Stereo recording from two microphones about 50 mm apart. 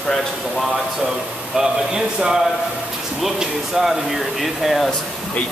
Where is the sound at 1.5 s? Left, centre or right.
Centre.